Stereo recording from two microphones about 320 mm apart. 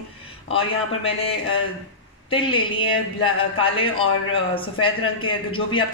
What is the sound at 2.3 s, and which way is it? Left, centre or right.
A man's voice, centre.